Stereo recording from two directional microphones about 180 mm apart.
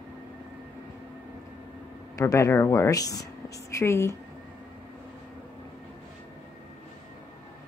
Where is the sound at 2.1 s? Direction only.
15° left (ahead or behind).